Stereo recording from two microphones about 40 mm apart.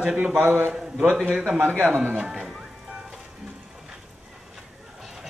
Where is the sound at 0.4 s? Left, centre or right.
Right.